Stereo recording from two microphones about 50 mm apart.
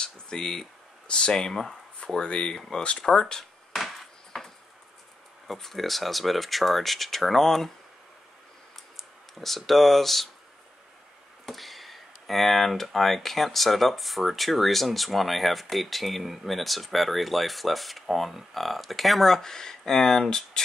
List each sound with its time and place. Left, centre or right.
0.0 s a sound: centre
2.1 s speech: centre
3.7 s a sound: centre
5.5 s speech: centre
9.6 s speech: centre
11.4 s speech: centre